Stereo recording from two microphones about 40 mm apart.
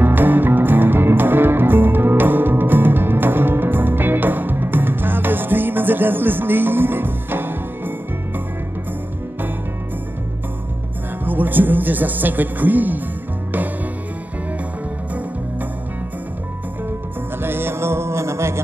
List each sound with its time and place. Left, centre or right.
0.0 s music: right
11.2 s speech: right
17.4 s music: right